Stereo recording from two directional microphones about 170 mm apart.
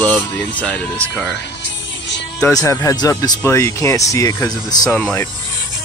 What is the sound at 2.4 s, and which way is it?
Speech, 20° left (ahead or behind).